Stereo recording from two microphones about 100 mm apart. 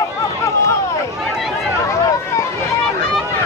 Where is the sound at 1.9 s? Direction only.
30° left (ahead or behind).